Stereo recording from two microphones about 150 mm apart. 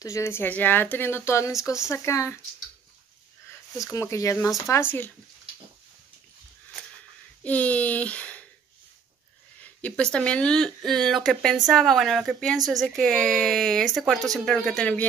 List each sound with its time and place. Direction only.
0.0 s speech: 20° left (ahead or behind)
3.8 s speech: 20° left (ahead or behind)
7.4 s speech: 10° left (ahead or behind)
9.6 s a sound: 10° left (ahead or behind)
10.1 s a woman's voice: 5° left (ahead or behind)